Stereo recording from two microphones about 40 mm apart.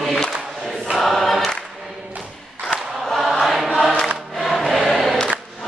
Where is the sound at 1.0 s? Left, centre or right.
Centre.